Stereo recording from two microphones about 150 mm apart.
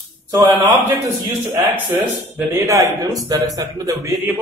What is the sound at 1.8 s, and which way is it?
A man's voice, 15° right (ahead or behind).